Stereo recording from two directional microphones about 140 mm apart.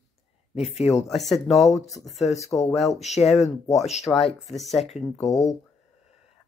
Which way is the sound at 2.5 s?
10° left (ahead or behind).